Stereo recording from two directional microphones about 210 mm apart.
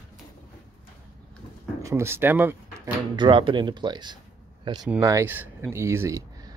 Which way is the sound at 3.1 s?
25° right (ahead or behind).